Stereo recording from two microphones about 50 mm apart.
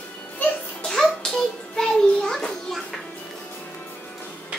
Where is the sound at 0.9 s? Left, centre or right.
Centre.